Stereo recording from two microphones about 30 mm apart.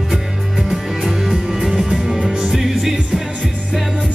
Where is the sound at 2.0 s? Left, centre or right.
Right.